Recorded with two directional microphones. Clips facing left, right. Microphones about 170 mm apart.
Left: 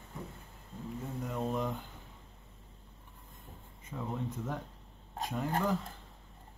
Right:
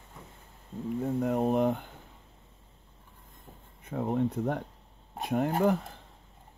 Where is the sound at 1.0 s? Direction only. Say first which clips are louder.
Right 9 dB; 55° right (ahead or behind).